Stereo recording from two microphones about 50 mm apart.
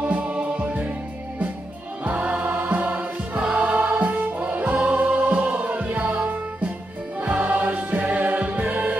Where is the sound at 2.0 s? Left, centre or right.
Right.